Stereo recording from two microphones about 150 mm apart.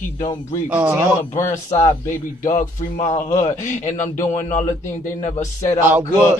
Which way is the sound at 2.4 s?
50° left (ahead or behind).